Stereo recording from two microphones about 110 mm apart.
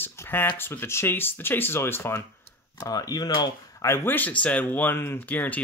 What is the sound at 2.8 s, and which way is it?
Speech, 35° left (ahead or behind).